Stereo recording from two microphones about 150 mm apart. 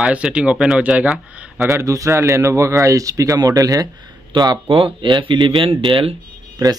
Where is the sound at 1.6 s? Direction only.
20° right (ahead or behind); by 6.2 s 35° right (ahead or behind).